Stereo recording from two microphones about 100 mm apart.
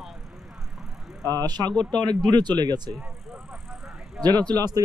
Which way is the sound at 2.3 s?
45° right (ahead or behind).